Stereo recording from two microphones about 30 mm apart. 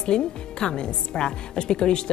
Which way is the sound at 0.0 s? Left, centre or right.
Left.